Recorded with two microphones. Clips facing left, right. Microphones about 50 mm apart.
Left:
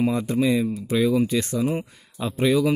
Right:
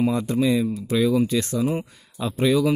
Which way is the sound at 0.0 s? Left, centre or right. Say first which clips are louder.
Even; centre.